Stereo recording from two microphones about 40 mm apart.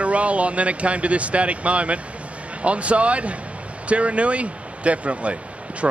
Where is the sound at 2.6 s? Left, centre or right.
Right.